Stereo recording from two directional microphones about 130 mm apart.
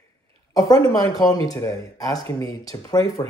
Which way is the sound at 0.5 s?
30° left (ahead or behind).